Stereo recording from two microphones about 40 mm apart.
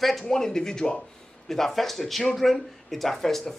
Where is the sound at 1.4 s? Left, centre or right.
Centre.